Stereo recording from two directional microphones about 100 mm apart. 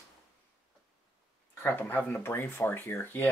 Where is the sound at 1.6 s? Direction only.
15° left (ahead or behind).